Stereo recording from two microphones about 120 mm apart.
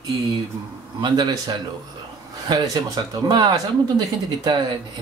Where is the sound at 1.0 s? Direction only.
35° right (ahead or behind).